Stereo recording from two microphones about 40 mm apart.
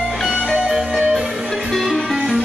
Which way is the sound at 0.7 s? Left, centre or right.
Centre.